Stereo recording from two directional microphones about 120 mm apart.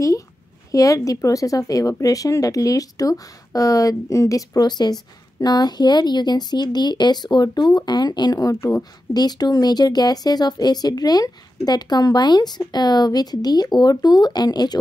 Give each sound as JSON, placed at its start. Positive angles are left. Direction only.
{"t": 0.7, "sound": "speech", "side_deg": 30}